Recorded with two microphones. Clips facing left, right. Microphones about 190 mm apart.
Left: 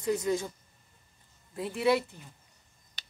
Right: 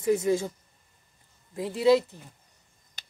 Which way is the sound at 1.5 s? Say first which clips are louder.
Right 5 dB; 20° right (ahead or behind).